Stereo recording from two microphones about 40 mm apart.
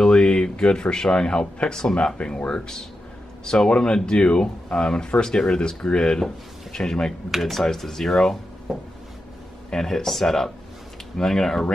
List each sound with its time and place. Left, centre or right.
0.0 s speech: left
2.1 s speech: left; by 8.4 s centre
8.7 s a sound: centre
9.7 s speech: centre